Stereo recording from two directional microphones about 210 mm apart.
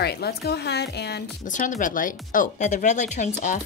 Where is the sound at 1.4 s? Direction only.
35° left (ahead or behind).